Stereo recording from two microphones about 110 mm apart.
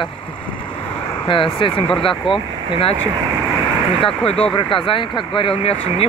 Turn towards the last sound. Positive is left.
turn(degrees=55)  # may be behind; listen again after turning